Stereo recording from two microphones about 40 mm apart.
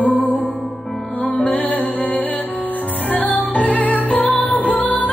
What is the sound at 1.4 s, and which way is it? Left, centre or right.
Music, left.